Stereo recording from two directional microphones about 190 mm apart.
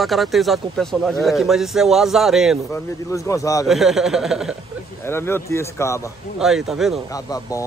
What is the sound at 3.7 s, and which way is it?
Speech, centre (ahead or behind).